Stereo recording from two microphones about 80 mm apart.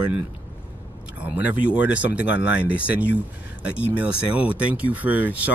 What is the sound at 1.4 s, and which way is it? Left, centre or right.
Speech, centre.